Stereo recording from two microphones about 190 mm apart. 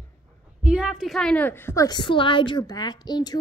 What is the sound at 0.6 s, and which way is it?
A woman's voice, 5° right (ahead or behind).